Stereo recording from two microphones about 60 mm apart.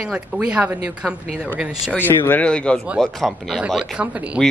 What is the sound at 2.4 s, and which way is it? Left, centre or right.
Music, centre.